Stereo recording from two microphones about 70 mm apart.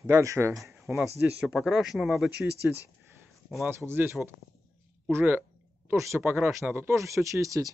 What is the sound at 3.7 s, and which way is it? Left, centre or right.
Speech, right.